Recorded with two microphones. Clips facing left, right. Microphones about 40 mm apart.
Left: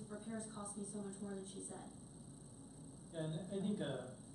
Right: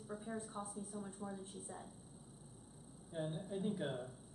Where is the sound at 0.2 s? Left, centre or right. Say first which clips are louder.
Right 2 dB; centre.